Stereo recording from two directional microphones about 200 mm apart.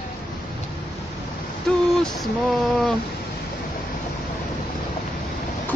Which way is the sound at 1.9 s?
Centre (ahead or behind).